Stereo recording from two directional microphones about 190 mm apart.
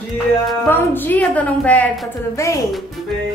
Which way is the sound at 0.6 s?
10° left (ahead or behind).